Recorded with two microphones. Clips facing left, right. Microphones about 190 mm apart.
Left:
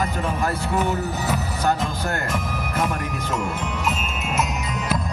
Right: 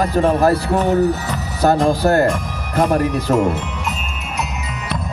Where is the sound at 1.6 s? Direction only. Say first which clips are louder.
Right 11 dB; 40° right (ahead or behind).